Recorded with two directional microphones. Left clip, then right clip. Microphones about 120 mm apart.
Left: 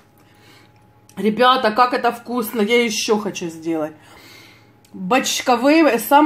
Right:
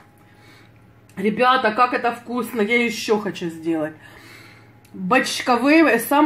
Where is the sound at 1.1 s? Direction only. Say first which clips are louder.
Left 2 dB; 20° left (ahead or behind).